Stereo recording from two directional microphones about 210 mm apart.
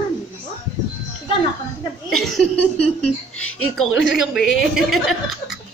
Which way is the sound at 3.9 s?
60° left (ahead or behind).